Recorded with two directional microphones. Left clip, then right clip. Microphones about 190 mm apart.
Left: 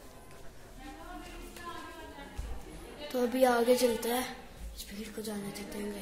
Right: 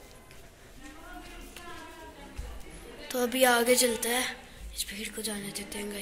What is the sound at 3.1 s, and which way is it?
A woman's voice, 5° left (ahead or behind).